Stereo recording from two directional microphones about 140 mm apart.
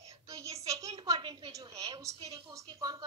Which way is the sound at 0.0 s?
20° right (ahead or behind).